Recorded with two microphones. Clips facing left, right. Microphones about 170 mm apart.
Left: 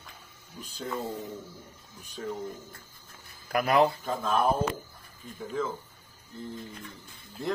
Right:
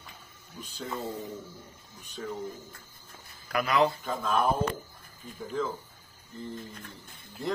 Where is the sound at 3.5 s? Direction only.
50° left (ahead or behind).